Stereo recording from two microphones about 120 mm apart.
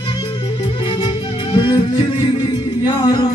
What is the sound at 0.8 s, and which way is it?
Music, 45° left (ahead or behind).